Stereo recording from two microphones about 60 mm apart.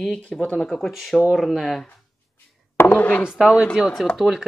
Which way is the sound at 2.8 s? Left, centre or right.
Left.